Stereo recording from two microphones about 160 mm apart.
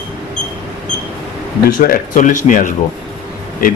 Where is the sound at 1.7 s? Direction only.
60° left (ahead or behind).